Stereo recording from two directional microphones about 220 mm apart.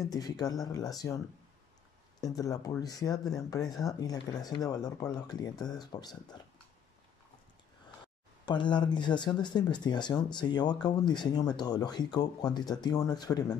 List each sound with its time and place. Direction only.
0.0 s speech: 15° left (ahead or behind)
8.5 s speech: 20° left (ahead or behind)